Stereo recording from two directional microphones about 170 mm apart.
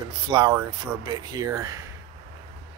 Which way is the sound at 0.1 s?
25° right (ahead or behind).